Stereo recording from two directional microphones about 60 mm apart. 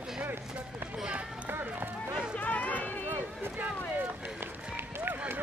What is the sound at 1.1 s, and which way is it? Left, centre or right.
Speech, right.